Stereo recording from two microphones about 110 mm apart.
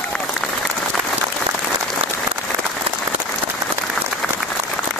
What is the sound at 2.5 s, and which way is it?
Applause, 30° right (ahead or behind).